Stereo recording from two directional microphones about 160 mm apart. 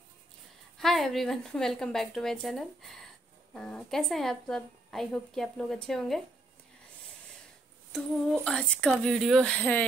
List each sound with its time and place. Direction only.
0.7 s a woman's voice: centre (ahead or behind)
7.9 s a woman's voice: centre (ahead or behind)